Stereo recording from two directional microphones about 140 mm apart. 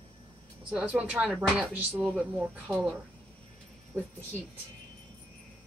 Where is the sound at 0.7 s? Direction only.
10° right (ahead or behind).